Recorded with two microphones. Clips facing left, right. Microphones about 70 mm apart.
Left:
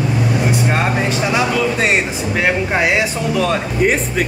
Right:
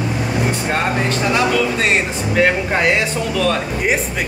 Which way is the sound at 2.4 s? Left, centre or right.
Centre.